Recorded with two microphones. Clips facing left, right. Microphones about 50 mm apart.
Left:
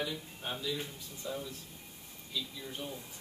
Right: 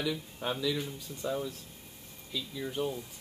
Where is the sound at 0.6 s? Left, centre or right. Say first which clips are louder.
Right 5 dB; right.